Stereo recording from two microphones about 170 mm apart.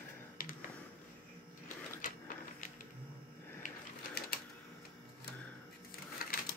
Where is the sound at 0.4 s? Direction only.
55° left (ahead or behind).